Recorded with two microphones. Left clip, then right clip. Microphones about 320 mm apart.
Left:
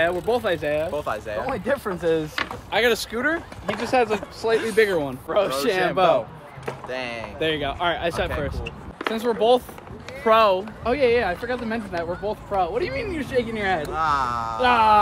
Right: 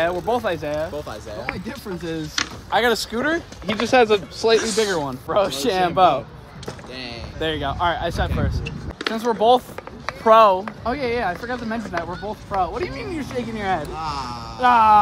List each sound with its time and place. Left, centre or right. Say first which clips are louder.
0.0 s speech: right 1 dB; centre
2.3 s speech: right 3 dB; centre
3.2 s speech: right 2 dB; right
4.7 s speech: left 1 dB; centre
7.3 s speech: right 1 dB; centre
13.9 s speech: left 6 dB; centre
14.6 s speech: right 3 dB; centre